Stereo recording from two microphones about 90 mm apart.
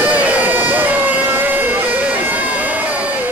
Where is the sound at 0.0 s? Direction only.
15° right (ahead or behind).